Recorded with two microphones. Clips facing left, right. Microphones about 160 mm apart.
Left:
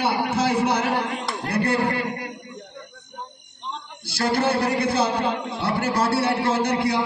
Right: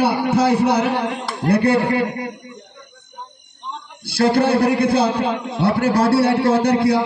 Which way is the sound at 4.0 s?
60° right (ahead or behind).